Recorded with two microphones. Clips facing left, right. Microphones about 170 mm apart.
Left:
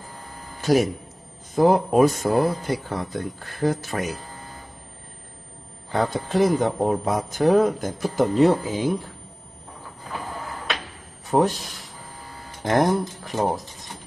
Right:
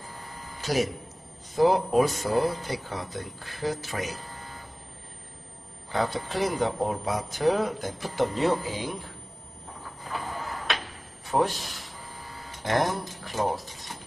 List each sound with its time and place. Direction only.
0.6 s a sound: 50° left (ahead or behind)
1.5 s speech: 50° left (ahead or behind)
5.9 s speech: 50° left (ahead or behind)
11.2 s speech: 40° left (ahead or behind)
12.6 s speech: 45° left (ahead or behind)